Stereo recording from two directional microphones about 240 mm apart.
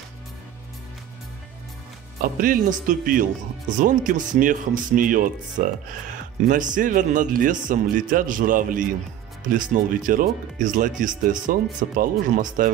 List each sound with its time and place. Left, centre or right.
2.4 s speech: right